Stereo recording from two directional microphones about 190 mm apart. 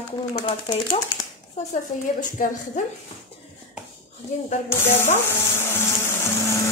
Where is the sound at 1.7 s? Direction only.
40° left (ahead or behind).